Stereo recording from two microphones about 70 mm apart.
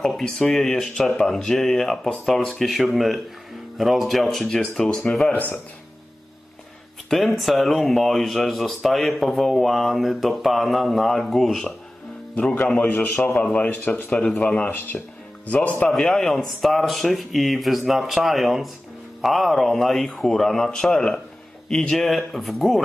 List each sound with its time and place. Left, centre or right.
0.2 s speech: centre
7.1 s speech: centre
12.4 s speech: centre
14.1 s speech: centre
14.5 s speech: left
15.9 s speech: centre